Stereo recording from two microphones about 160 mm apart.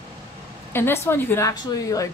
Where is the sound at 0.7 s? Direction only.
15° left (ahead or behind).